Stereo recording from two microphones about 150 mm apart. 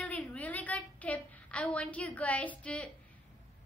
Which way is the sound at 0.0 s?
10° left (ahead or behind).